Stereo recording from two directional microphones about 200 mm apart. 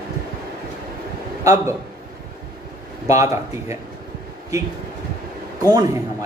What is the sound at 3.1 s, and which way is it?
Speech, 15° right (ahead or behind).